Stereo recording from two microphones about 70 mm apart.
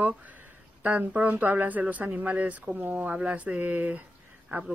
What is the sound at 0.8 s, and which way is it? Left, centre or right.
Speech, right.